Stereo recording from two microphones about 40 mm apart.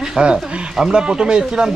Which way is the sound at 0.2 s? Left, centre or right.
Right.